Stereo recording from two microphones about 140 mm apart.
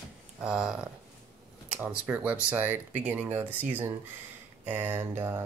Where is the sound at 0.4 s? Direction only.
5° right (ahead or behind).